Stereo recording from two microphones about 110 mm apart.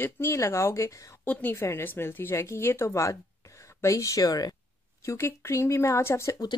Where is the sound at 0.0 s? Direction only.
25° left (ahead or behind).